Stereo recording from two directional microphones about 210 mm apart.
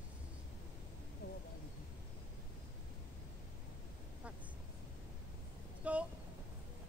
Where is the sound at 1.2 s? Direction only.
50° left (ahead or behind).